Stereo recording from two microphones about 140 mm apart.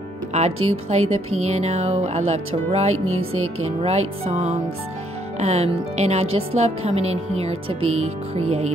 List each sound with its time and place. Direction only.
0.3 s speech: 50° right (ahead or behind)